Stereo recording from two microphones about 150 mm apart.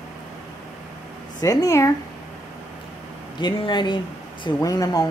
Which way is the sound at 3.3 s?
30° left (ahead or behind).